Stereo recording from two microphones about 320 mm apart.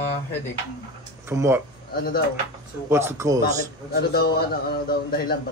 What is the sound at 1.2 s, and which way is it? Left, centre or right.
Speech, centre.